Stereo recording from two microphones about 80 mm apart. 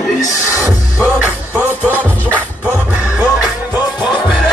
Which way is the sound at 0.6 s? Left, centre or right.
Centre.